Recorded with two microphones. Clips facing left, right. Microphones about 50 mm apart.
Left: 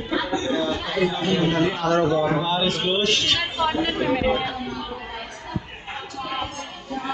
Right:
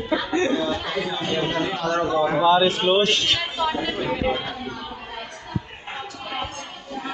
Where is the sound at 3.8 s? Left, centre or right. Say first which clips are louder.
Left 3 dB; left.